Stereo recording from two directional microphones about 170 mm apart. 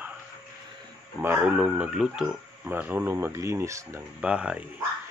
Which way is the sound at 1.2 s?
10° right (ahead or behind).